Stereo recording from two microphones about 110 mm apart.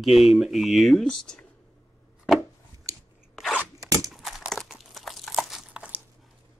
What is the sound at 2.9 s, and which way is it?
Chewing, 30° right (ahead or behind).